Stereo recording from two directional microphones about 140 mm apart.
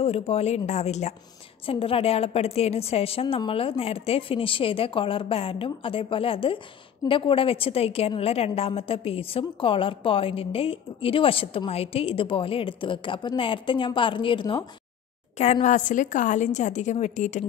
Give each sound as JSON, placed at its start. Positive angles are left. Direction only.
{"t": 0.0, "sound": "speech", "side_deg": 50}
{"t": 1.7, "sound": "a woman's voice", "side_deg": 40}
{"t": 15.3, "sound": "a woman's voice", "side_deg": 55}